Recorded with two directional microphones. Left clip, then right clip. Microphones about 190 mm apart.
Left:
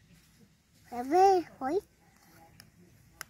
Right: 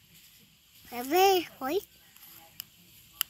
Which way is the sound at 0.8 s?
10° right (ahead or behind).